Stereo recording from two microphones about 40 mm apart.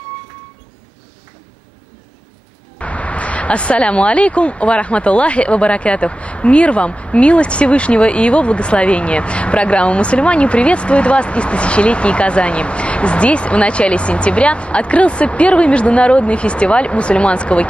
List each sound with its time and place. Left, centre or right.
2.8 s speech: left